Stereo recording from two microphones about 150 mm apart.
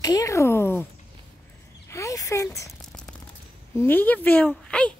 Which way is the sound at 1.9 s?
20° left (ahead or behind).